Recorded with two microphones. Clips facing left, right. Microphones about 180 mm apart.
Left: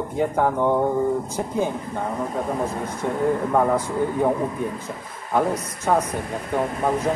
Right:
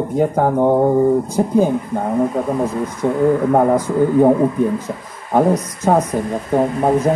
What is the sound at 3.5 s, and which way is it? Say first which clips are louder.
Speech: right 6 dB; 40° right (ahead or behind).